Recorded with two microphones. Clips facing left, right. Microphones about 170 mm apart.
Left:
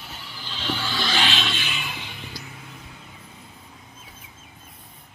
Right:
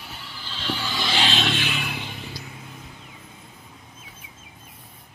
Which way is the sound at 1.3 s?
60° right (ahead or behind).